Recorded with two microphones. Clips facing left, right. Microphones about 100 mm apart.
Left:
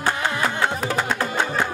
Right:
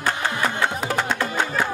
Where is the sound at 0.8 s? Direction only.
5° left (ahead or behind).